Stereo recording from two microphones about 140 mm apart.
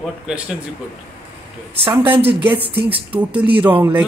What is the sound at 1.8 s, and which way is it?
Speech, 35° right (ahead or behind).